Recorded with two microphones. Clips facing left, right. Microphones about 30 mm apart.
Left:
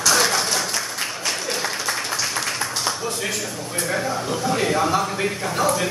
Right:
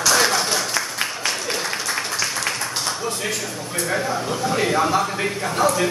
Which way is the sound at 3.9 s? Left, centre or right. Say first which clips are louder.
Right 1 dB; centre.